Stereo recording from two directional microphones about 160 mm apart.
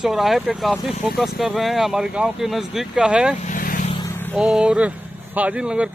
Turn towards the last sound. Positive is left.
turn(degrees=-5)  # may be behind; listen again after turning